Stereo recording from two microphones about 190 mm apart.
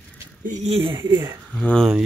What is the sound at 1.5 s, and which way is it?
Speech, 5° left (ahead or behind).